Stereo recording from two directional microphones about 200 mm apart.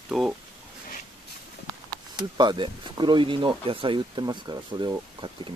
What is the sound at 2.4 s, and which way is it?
Speech, 20° right (ahead or behind).